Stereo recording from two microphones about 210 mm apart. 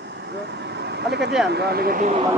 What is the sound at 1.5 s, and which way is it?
Speech, 50° right (ahead or behind).